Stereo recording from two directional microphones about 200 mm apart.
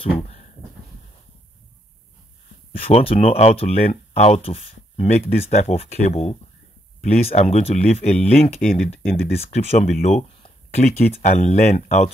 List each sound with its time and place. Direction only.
2.7 s speech: 30° left (ahead or behind)